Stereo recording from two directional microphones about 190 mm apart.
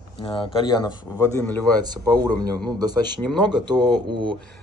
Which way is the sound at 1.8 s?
20° right (ahead or behind).